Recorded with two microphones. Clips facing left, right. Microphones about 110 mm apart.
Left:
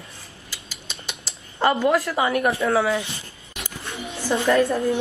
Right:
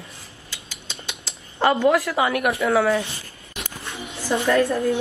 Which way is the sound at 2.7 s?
5° left (ahead or behind).